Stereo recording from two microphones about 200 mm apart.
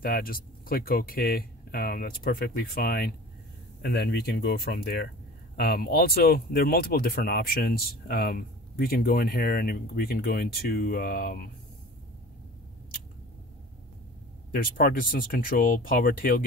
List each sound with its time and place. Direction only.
0.0 s speech: 45° left (ahead or behind)
14.5 s speech: 45° left (ahead or behind)